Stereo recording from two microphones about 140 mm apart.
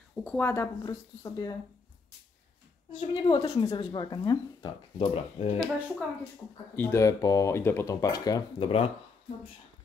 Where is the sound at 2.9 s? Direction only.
35° left (ahead or behind).